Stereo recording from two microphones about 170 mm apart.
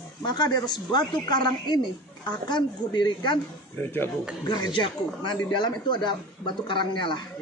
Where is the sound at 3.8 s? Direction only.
10° left (ahead or behind).